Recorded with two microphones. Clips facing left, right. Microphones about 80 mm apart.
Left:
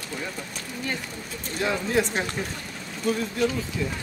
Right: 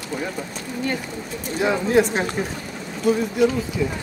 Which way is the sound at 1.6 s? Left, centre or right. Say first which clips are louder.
Right 6 dB; centre.